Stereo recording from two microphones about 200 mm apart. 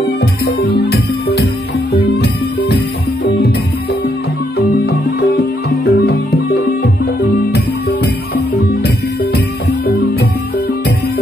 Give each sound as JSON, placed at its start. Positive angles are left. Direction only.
{"t": 0.7, "sound": "music", "side_deg": 55}
{"t": 5.4, "sound": "music", "side_deg": 50}
{"t": 8.6, "sound": "music", "side_deg": 55}